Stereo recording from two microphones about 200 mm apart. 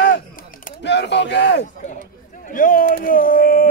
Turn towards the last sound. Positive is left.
turn(degrees=45)  # may be behind; listen again after turning